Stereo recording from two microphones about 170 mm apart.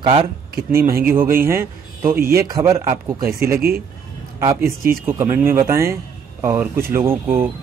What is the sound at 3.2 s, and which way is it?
Speech, 60° right (ahead or behind).